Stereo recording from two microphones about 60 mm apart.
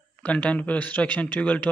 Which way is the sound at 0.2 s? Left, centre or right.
Left.